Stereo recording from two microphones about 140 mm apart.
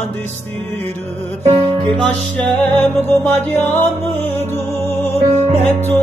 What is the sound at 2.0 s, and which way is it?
Music, 10° left (ahead or behind).